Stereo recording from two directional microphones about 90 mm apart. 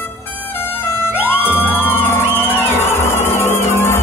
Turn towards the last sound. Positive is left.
turn(degrees=30)  # may be behind; listen again after turning